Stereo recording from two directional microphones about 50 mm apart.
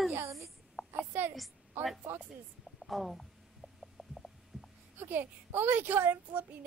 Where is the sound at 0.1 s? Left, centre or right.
Right.